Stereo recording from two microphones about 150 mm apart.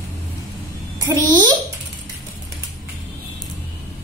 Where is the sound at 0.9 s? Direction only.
25° right (ahead or behind).